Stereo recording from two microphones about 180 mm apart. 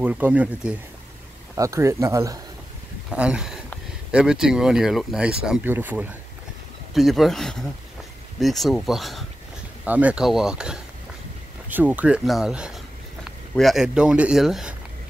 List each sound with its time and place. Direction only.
0.0 s speech: 10° right (ahead or behind)
3.1 s speech: 5° right (ahead or behind)